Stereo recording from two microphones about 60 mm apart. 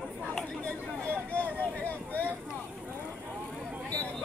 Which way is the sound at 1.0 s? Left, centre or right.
Left.